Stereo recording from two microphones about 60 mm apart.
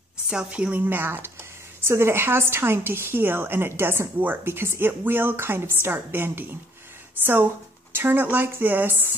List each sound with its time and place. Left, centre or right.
0.3 s a woman's voice: centre
0.7 s a woman's voice: right
7.9 s a woman's voice: right